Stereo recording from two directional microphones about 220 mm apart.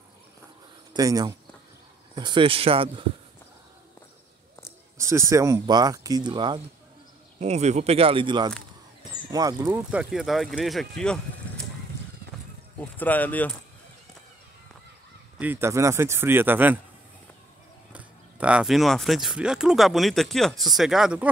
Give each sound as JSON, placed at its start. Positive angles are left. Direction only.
{"t": 0.9, "sound": "speech", "side_deg": -15}
{"t": 4.9, "sound": "speech", "side_deg": -15}
{"t": 9.8, "sound": "speech", "side_deg": -5}
{"t": 12.9, "sound": "speech", "side_deg": 5}
{"t": 15.3, "sound": "speech", "side_deg": -10}
{"t": 17.9, "sound": "speech", "side_deg": -5}